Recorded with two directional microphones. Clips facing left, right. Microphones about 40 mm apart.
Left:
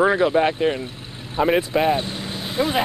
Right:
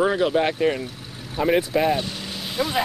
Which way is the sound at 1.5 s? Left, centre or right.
Left.